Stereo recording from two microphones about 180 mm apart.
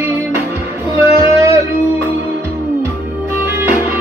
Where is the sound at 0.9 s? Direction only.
15° right (ahead or behind).